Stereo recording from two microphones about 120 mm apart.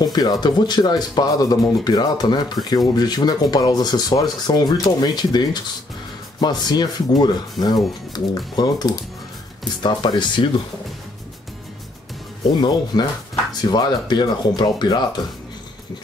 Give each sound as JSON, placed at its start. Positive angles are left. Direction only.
{"t": 0.0, "sound": "speech", "side_deg": 35}
{"t": 12.5, "sound": "speech", "side_deg": 35}